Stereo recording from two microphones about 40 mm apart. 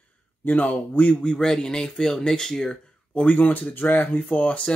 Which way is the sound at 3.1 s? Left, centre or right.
Left.